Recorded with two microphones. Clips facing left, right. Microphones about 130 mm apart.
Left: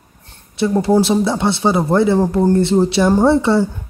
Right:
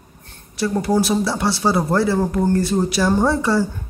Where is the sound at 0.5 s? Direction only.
25° left (ahead or behind).